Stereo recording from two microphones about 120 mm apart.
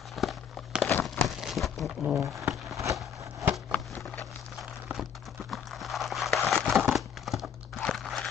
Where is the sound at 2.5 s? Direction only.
Centre (ahead or behind).